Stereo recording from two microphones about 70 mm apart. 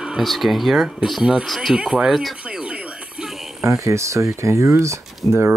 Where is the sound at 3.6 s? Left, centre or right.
Right.